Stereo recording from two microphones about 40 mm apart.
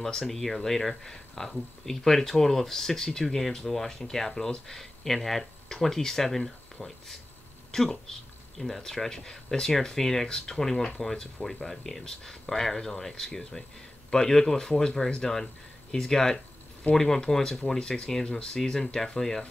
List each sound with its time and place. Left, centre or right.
0.3 s speech: centre